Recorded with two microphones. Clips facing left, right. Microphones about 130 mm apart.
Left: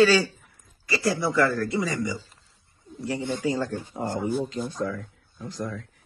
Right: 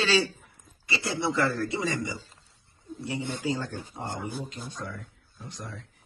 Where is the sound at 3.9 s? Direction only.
60° left (ahead or behind).